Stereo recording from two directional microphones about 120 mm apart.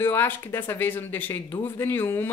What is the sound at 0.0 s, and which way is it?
Speech, 20° left (ahead or behind).